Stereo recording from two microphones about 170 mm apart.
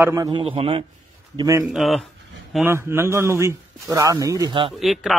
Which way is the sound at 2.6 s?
15° right (ahead or behind).